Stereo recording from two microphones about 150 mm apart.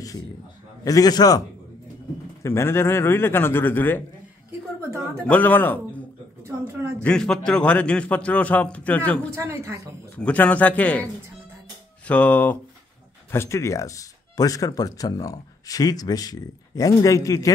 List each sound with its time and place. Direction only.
0.8 s speech: 25° left (ahead or behind)
2.4 s a man's voice: 15° left (ahead or behind)
5.3 s a man's voice: 10° left (ahead or behind)
6.4 s speech: 15° right (ahead or behind)
7.0 s a man's voice: 5° left (ahead or behind)
9.3 s speech: 20° right (ahead or behind)
10.1 s a man's voice: 10° left (ahead or behind)
12.1 s a man's voice: 10° left (ahead or behind)